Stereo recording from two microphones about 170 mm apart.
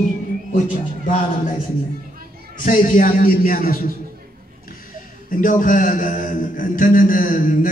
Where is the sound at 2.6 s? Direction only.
55° left (ahead or behind).